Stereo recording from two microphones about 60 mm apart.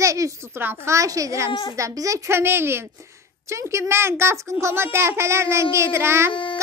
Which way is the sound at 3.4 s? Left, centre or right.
Right.